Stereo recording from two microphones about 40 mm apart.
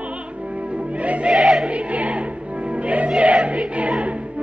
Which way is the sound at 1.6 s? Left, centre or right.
Right.